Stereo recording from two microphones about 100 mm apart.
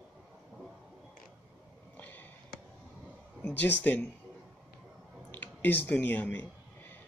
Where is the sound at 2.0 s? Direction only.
20° left (ahead or behind).